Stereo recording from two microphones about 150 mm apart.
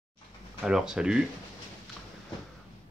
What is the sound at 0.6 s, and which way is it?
Speech, 5° right (ahead or behind).